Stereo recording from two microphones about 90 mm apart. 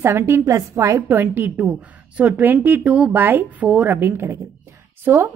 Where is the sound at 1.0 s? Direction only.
20° right (ahead or behind).